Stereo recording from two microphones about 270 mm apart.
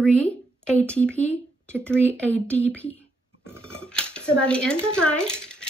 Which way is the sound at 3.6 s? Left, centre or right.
Centre.